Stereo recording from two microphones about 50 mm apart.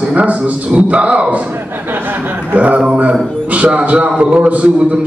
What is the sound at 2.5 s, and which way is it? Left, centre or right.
A man's voice, right.